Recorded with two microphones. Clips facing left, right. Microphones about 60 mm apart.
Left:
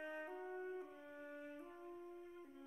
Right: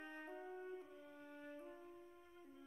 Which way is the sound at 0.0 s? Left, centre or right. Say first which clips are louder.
Left 4 dB; centre.